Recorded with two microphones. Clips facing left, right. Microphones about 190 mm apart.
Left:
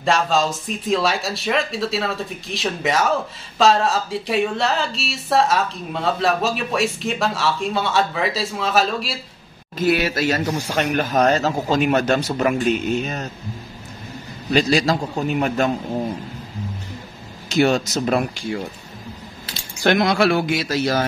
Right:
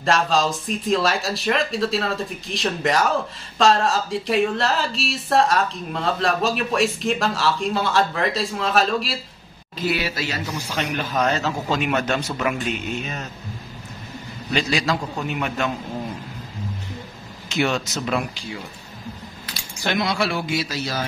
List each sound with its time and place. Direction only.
0.0 s speech: centre (ahead or behind)
9.8 s speech: 50° left (ahead or behind)
14.5 s a man's voice: 40° left (ahead or behind)
17.5 s a man's voice: 40° left (ahead or behind)
19.8 s speech: 55° left (ahead or behind)